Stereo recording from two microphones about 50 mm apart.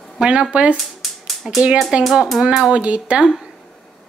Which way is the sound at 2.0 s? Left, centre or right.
Centre.